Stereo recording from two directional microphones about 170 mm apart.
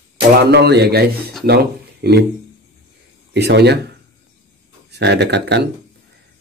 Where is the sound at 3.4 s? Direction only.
80° right.